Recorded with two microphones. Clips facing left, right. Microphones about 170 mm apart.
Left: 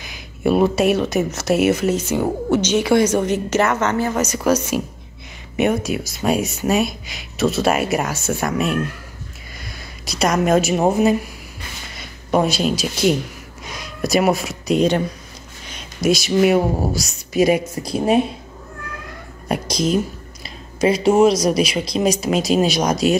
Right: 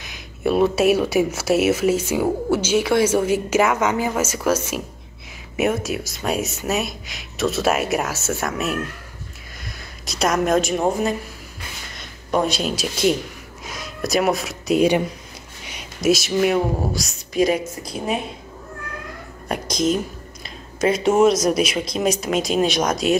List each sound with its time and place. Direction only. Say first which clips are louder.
0.0 s a woman's voice: left 2 dB; centre (ahead or behind)
9.6 s a sound: left 1 dB; centre (ahead or behind)
10.9 s speech: left 5 dB; 5° left (ahead or behind)
19.5 s speech: left 2 dB; centre (ahead or behind)